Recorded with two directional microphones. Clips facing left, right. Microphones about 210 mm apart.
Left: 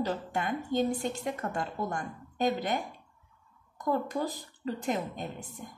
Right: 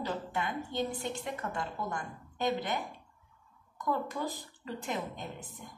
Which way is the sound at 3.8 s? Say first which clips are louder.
Left 4 dB; 40° left (ahead or behind).